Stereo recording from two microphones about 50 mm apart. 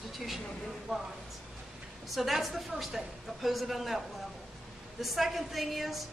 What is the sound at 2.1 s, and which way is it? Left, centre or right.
A woman's voice, centre.